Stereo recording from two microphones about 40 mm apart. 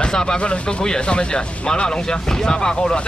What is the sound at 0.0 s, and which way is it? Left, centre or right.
Speech, centre.